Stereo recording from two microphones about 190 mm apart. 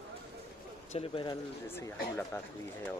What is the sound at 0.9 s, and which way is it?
Speech, 30° left (ahead or behind).